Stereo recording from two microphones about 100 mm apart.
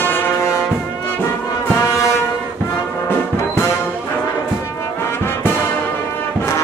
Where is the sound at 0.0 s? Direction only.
25° left (ahead or behind).